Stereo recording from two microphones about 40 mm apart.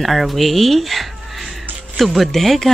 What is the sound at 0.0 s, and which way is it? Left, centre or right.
Speech, centre.